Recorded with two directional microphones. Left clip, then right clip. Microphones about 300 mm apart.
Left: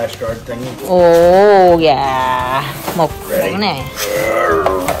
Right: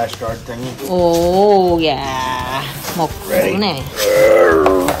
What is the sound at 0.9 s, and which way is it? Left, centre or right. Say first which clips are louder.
Speech: left 6 dB; centre.